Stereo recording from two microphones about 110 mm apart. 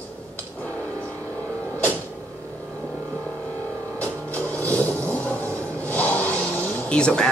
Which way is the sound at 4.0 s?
25° right (ahead or behind).